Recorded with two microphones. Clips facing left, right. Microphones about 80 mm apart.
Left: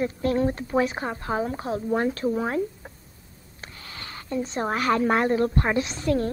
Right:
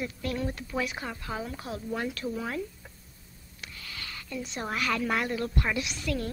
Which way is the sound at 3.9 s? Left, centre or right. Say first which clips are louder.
Left 7 dB; left.